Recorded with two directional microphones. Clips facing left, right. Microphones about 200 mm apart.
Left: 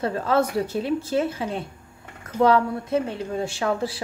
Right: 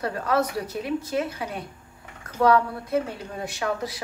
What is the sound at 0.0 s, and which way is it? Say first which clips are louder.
A woman's voice: left 3 dB; 25° left (ahead or behind).